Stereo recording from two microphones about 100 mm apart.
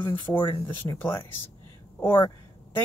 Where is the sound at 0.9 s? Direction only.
35° left (ahead or behind).